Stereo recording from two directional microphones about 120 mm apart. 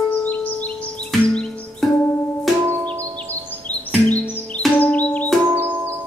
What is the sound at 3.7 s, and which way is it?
Music, 35° right (ahead or behind).